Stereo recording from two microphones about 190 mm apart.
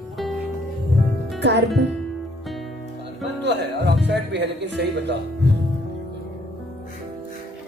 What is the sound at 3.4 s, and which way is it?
Music, 65° right (ahead or behind).